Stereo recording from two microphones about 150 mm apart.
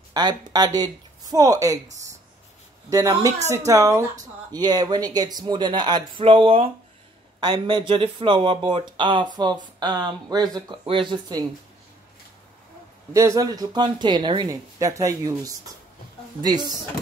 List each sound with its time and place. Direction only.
0.1 s speech: 25° right (ahead or behind)
2.9 s speech: 25° right (ahead or behind)
13.1 s speech: 20° right (ahead or behind)